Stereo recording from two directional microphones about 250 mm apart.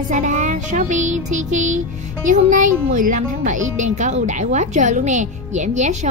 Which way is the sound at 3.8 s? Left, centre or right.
Right.